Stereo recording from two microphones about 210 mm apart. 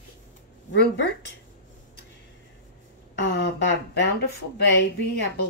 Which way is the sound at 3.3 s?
55° left (ahead or behind).